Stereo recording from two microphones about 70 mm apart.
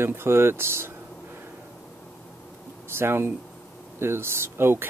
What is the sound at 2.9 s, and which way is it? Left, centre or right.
Speech, right.